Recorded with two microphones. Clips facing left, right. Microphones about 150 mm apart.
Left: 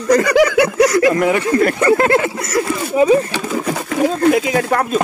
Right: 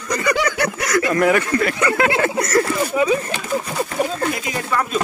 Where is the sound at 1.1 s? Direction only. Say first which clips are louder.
Left 1 dB; 20° left (ahead or behind).